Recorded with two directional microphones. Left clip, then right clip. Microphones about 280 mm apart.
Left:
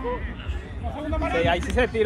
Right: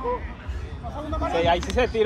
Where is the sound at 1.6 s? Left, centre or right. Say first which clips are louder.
Even; right.